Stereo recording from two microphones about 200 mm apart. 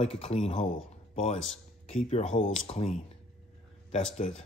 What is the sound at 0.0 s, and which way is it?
A man's voice, 30° left (ahead or behind).